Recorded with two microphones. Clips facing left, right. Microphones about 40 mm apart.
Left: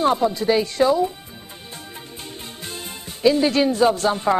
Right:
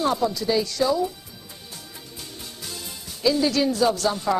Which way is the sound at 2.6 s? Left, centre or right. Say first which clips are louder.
Left 3 dB; left.